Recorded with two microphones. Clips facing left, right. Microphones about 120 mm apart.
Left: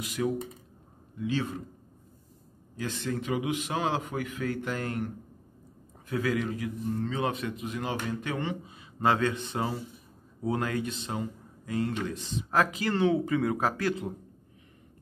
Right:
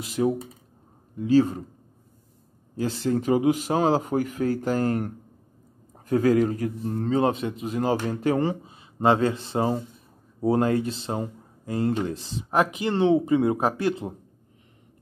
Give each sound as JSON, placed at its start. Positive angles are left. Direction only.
{"t": 0.0, "sound": "a man's voice", "side_deg": -30}
{"t": 2.7, "sound": "a man's voice", "side_deg": -35}
{"t": 12.4, "sound": "speech", "side_deg": -20}